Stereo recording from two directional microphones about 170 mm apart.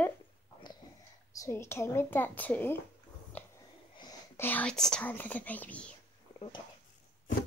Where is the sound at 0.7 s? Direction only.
25° left (ahead or behind).